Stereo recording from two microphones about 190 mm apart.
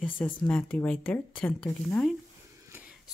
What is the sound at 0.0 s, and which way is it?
Speech, 10° left (ahead or behind).